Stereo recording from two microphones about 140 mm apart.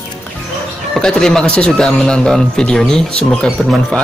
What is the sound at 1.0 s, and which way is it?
Speech, 5° left (ahead or behind).